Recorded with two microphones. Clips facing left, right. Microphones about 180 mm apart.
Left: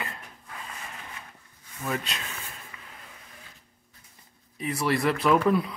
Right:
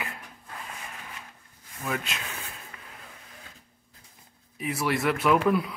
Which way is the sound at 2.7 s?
50° right (ahead or behind).